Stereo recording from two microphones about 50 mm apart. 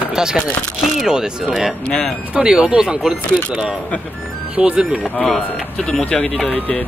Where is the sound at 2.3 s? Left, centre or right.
Centre.